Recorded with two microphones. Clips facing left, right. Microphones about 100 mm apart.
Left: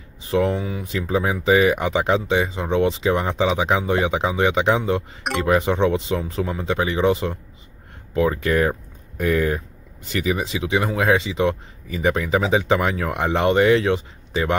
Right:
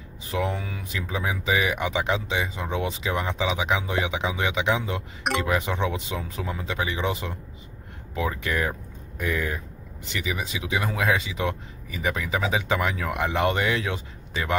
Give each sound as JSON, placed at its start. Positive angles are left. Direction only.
{"t": 0.3, "sound": "speech", "side_deg": 25}
{"t": 9.2, "sound": "speech", "side_deg": 60}
{"t": 10.2, "sound": "speech", "side_deg": 35}